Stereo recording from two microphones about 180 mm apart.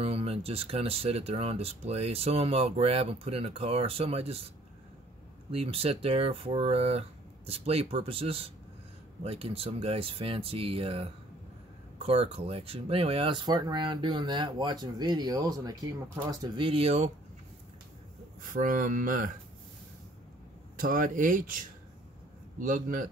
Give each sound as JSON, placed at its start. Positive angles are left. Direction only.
{"t": 0.0, "sound": "speech", "side_deg": -35}
{"t": 5.5, "sound": "speech", "side_deg": -35}
{"t": 18.4, "sound": "speech", "side_deg": -45}
{"t": 20.7, "sound": "speech", "side_deg": -50}